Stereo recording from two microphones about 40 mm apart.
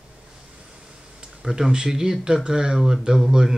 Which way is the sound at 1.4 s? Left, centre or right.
Centre.